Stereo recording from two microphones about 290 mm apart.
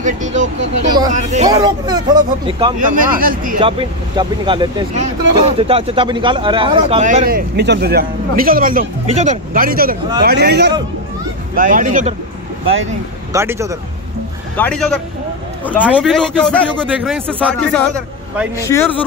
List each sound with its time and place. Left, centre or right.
0.0 s a sound: right
1.5 s speech: centre
2.8 s speech: right
3.6 s a man's voice: centre
13.3 s speech: centre
14.6 s a man's voice: centre